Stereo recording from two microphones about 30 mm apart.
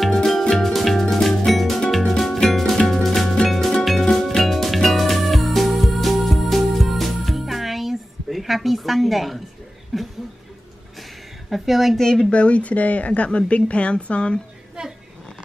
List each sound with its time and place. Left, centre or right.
0.3 s music: centre
9.9 s speech: centre
11.5 s a woman's voice: centre
12.0 s speech: centre
12.3 s a woman's voice: left